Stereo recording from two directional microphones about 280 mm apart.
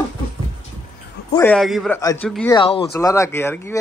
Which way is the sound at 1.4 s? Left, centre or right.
Centre.